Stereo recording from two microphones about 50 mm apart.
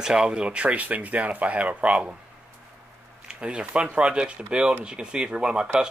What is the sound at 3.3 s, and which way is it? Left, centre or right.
Speech, centre.